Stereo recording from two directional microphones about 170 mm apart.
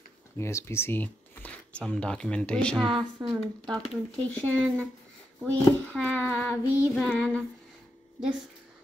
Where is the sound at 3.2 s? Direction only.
20° right (ahead or behind).